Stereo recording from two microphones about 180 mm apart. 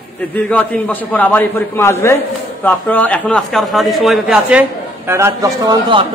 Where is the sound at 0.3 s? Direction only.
10° left (ahead or behind).